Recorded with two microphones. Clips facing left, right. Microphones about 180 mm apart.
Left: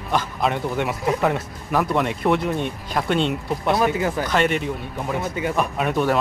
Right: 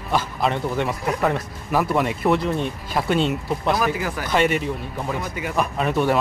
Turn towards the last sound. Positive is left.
turn(degrees=0)  # may be behind; listen again after turning